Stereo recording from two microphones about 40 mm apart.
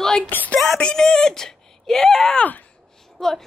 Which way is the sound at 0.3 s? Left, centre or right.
Left.